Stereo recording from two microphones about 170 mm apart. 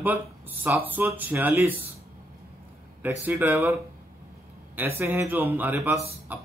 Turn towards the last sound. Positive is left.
turn(degrees=-10)  # may be behind; listen again after turning